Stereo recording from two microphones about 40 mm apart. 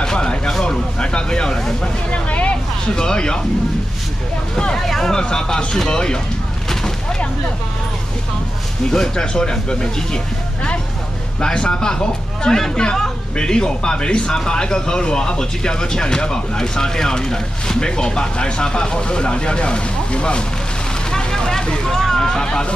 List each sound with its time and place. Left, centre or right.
0.0 s speech: centre
2.0 s vehicle: left
3.0 s speech: centre
4.7 s speech: centre
8.9 s speech: centre
21.1 s hubbub: centre